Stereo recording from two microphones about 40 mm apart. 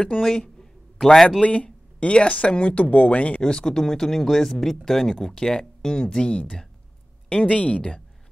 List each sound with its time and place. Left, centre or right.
0.2 s speech: centre
1.4 s speech: left
3.4 s speech: centre